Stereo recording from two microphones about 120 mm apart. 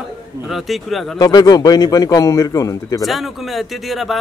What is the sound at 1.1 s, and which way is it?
Speech, 30° left (ahead or behind).